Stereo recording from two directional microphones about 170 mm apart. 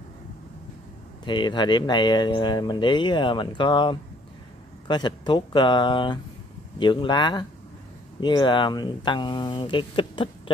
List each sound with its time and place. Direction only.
1.2 s speech: 25° left (ahead or behind)